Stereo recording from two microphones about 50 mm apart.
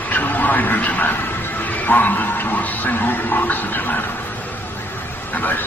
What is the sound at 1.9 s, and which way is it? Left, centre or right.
Music, left.